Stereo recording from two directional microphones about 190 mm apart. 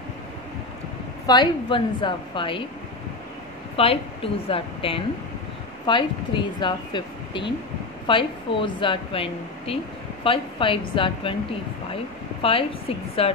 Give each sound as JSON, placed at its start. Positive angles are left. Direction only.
{"t": 1.2, "sound": "speech", "side_deg": 25}
{"t": 3.7, "sound": "speech", "side_deg": 30}